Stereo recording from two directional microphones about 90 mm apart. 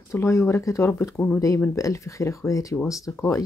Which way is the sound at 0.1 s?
30° left (ahead or behind).